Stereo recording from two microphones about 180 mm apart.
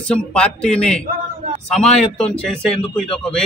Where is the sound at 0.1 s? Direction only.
5° left (ahead or behind).